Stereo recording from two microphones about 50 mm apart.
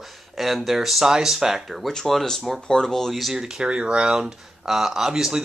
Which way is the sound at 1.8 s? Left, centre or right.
Centre.